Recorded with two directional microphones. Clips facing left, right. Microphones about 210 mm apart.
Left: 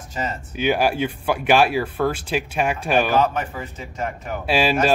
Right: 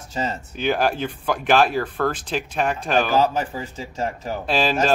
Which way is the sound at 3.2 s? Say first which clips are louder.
Right 1 dB; 30° right (ahead or behind).